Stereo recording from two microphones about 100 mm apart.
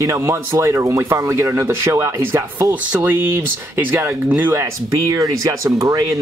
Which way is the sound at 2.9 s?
20° right (ahead or behind).